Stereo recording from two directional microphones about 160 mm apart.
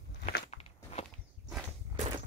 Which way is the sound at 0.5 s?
40° left (ahead or behind).